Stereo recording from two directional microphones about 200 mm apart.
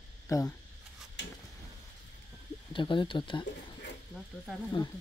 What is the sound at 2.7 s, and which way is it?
Speech, 25° left (ahead or behind).